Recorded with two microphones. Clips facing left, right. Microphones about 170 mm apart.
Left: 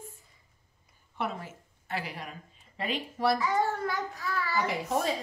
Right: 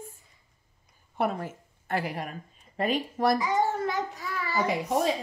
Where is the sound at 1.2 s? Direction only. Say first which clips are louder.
Right 6 dB; 50° right (ahead or behind).